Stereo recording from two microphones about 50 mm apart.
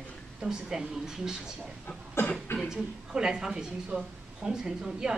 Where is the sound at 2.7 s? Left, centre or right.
Centre.